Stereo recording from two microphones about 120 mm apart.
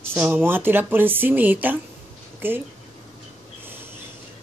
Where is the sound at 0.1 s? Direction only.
15° right (ahead or behind).